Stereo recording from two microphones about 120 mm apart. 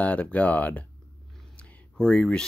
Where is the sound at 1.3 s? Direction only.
5° left (ahead or behind).